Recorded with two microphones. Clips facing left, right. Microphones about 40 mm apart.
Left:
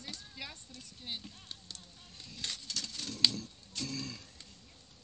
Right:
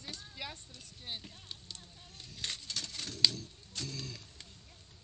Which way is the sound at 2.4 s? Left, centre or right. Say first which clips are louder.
Even; right.